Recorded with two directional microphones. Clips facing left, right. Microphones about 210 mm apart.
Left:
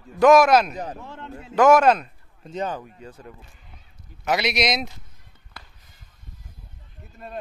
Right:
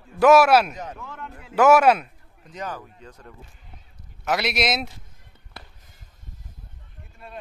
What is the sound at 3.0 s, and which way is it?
Speech, 10° left (ahead or behind).